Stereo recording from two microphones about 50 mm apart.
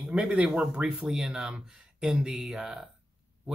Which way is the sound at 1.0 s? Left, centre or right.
Centre.